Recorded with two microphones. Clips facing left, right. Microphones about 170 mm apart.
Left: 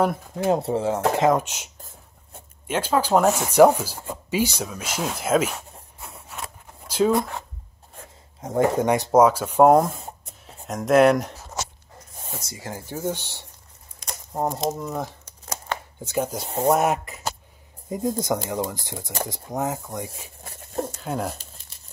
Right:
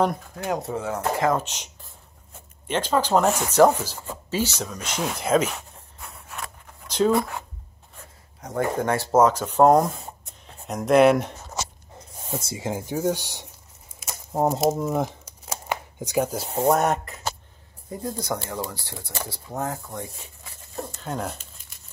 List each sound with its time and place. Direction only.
0.4 s speech: 30° left (ahead or behind)
1.4 s speech: 10° left (ahead or behind)
2.7 s speech: 10° left (ahead or behind)
6.9 s a sound: 10° left (ahead or behind)
8.4 s speech: 20° left (ahead or behind); by 11.4 s centre (ahead or behind)
12.4 s speech: 25° right (ahead or behind)
13.9 s a sound: 5° right (ahead or behind)
14.7 s speech: 20° right (ahead or behind); by 17.2 s centre (ahead or behind)
17.8 s speech: 20° left (ahead or behind)
20.4 s zipper: 55° left (ahead or behind)
21.0 s speech: 5° left (ahead or behind)